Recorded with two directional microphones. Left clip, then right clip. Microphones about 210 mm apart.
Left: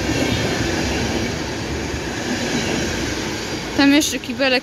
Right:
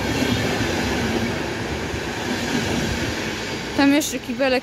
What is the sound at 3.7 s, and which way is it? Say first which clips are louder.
Speech: left 3 dB; 5° right (ahead or behind).